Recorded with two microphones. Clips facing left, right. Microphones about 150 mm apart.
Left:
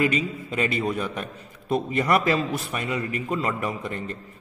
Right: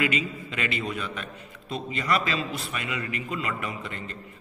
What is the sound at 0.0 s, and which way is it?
A man's voice, 35° left (ahead or behind).